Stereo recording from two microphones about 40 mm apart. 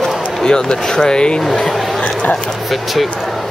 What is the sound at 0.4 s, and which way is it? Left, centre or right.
Speech, centre.